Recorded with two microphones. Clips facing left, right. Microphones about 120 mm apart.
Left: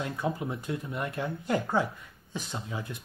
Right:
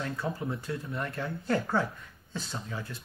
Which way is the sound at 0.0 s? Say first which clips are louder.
Left 2 dB; 15° left (ahead or behind).